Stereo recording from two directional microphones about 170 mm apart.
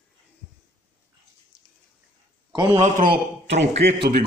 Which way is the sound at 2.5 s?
30° right (ahead or behind).